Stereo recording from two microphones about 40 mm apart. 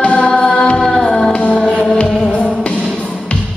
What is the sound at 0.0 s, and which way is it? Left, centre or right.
Choir, left.